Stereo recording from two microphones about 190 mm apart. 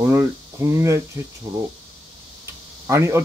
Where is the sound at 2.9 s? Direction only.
15° right (ahead or behind).